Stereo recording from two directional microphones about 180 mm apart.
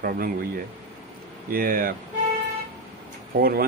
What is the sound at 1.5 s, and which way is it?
Speech, 55° right (ahead or behind).